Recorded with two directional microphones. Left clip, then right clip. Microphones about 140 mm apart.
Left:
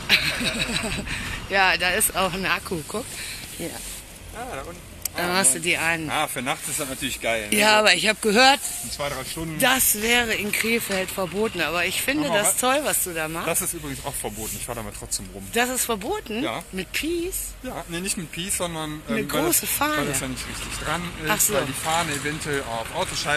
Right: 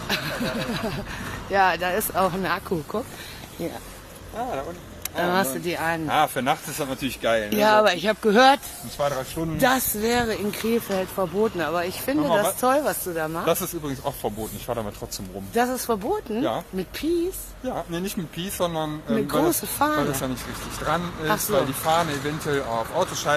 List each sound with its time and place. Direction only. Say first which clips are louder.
0.1 s speech: left 6 dB; centre (ahead or behind)
2.1 s speech: even; 10° right (ahead or behind)
4.4 s speech: right 5 dB; 35° right (ahead or behind)
5.1 s speech: right 1 dB; 5° right (ahead or behind)
6.0 s speech: right 4 dB; 40° right (ahead or behind)
7.4 s speech: left 2 dB; centre (ahead or behind)
8.9 s speech: right 4 dB; 20° right (ahead or behind); by 13.5 s 5° left (ahead or behind)
13.5 s speech: right 3 dB; 45° right (ahead or behind)
15.5 s speech: even; centre (ahead or behind)
18.6 s speech: right 7 dB; 20° right (ahead or behind)
19.1 s speech: right 1 dB; 10° right (ahead or behind)
21.8 s speech: right 2 dB; 65° right (ahead or behind)
22.5 s speech: right 4 dB; 25° right (ahead or behind)